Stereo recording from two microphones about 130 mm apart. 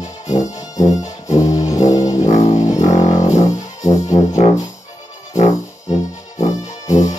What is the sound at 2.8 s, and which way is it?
Music, 65° left (ahead or behind).